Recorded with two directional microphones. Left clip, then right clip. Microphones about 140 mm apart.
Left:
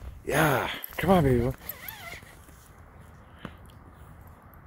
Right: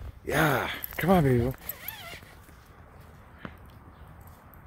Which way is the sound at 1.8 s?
35° left (ahead or behind).